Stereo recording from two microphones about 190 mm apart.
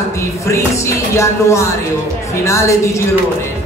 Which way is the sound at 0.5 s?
15° left (ahead or behind).